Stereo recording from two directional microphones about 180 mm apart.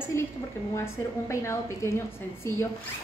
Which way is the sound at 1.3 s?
15° left (ahead or behind).